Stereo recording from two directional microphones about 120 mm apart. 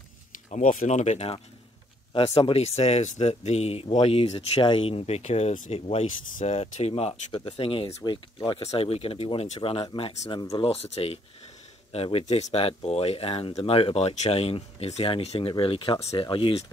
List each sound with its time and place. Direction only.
0.5 s speech: 90° left; by 1.4 s 60° left (ahead or behind)
2.1 s speech: 50° left (ahead or behind)
4.6 s speech: 40° left (ahead or behind)
4.8 s speech: 55° left (ahead or behind); by 5.8 s 75° left (ahead or behind)
5.8 s speech: 55° left (ahead or behind)
7.3 s speech: 45° left (ahead or behind)
8.7 s speech: 50° left (ahead or behind)